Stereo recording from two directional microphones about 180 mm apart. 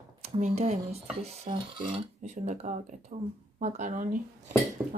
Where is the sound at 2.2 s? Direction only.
45° right (ahead or behind).